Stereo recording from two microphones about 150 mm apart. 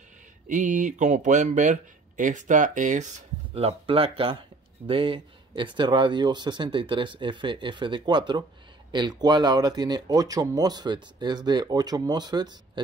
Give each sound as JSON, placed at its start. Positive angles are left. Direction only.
{"t": 0.5, "sound": "speech", "side_deg": -55}
{"t": 3.5, "sound": "speech", "side_deg": -40}